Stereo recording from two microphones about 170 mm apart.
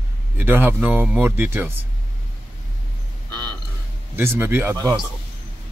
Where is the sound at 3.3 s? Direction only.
25° right (ahead or behind).